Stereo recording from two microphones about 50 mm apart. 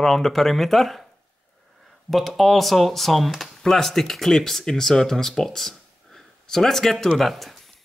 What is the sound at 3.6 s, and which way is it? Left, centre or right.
Speech, centre.